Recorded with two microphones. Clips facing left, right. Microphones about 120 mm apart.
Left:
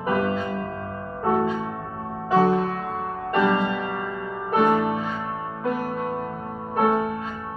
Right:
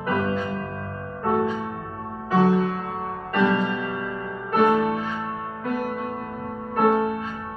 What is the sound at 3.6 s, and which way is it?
Music, centre (ahead or behind).